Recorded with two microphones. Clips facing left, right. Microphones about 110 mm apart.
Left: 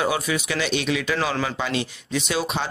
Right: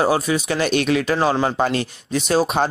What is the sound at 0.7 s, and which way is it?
Speech, 50° right (ahead or behind).